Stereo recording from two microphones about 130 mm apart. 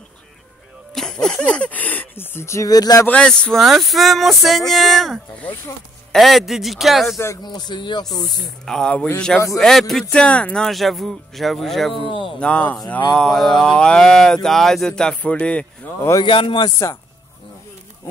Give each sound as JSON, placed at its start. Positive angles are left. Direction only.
{"t": 0.9, "sound": "speech", "side_deg": 5}
{"t": 3.1, "sound": "speech", "side_deg": 5}
{"t": 7.4, "sound": "speech", "side_deg": 35}
{"t": 8.6, "sound": "speech", "side_deg": 5}
{"t": 11.9, "sound": "speech", "side_deg": 40}
{"t": 12.4, "sound": "speech", "side_deg": 10}
{"t": 16.3, "sound": "speech", "side_deg": 40}
{"t": 16.7, "sound": "speech", "side_deg": 20}